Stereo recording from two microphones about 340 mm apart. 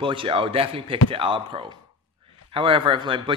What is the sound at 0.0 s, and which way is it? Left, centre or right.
Speech, centre.